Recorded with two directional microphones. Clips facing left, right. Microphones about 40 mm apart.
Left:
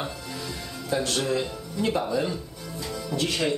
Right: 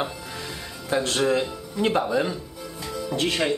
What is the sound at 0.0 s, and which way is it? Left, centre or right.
Music, right.